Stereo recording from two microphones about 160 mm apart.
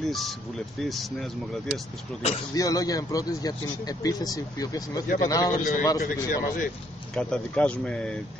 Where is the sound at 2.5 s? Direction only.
20° left (ahead or behind).